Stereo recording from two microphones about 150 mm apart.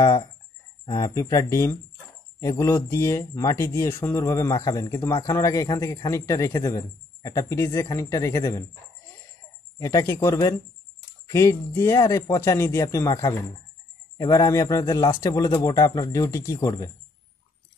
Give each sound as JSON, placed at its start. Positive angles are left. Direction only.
{"t": 0.0, "sound": "speech", "side_deg": 20}
{"t": 9.8, "sound": "speech", "side_deg": 25}